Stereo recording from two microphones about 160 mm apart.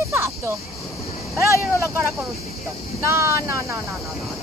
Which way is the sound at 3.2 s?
15° right (ahead or behind).